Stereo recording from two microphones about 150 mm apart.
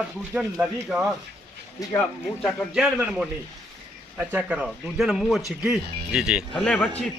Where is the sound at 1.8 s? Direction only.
25° left (ahead or behind).